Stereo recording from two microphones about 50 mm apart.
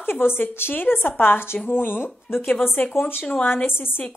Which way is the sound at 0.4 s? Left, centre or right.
Left.